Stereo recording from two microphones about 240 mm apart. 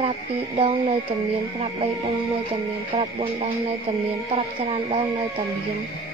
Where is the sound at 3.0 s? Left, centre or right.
Right.